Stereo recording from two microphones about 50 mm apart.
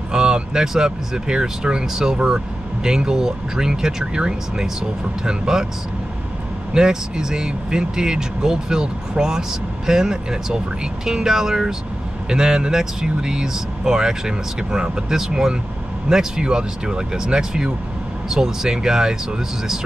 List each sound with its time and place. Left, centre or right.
0.1 s speech: centre
6.7 s speech: centre